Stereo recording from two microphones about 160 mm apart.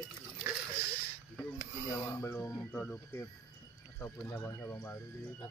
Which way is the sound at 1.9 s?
15° left (ahead or behind).